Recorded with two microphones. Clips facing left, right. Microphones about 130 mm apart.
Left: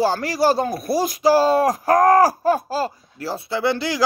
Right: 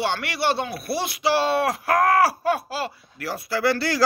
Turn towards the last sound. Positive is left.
turn(degrees=15)  # may be behind; listen again after turning